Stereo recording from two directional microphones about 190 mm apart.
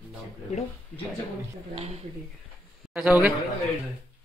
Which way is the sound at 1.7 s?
30° right (ahead or behind).